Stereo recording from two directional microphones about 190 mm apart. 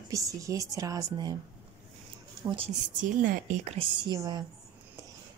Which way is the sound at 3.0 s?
45° right (ahead or behind).